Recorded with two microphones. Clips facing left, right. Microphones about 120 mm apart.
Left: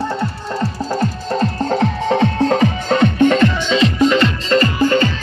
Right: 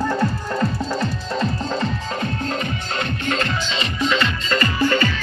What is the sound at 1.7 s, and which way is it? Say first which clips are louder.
Music: left 8 dB; 85° left.